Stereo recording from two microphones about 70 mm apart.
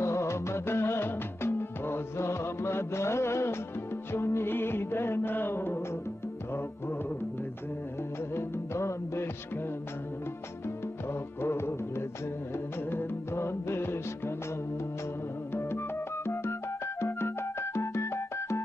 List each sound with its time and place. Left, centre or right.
0.0 s music: left
8.4 s music: left
11.4 s music: left
12.9 s music: left
16.3 s music: left